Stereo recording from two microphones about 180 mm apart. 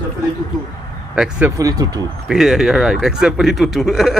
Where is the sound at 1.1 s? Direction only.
5° right (ahead or behind).